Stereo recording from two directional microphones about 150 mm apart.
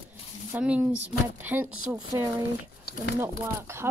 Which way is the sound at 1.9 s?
25° right (ahead or behind).